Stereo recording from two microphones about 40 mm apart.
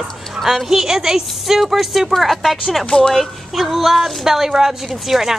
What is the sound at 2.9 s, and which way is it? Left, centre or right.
Speech, centre.